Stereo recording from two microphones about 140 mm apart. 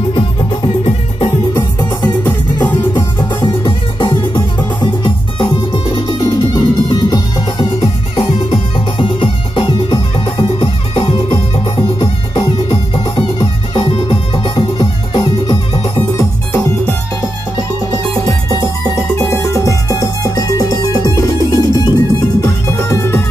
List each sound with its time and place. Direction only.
1.5 s music: 30° left (ahead or behind)
2.7 s music: 20° left (ahead or behind)
4.3 s music: 35° left (ahead or behind)
19.1 s music: 20° left (ahead or behind)